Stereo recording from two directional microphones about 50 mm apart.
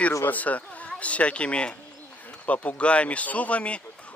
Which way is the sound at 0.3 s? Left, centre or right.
Left.